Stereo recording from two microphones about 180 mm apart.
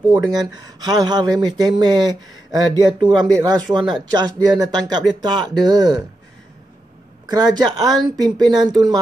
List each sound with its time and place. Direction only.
0.2 s speech: 20° right (ahead or behind)
2.9 s speech: 5° left (ahead or behind)
3.4 s speech: 25° right (ahead or behind)
7.2 s speech: 20° right (ahead or behind)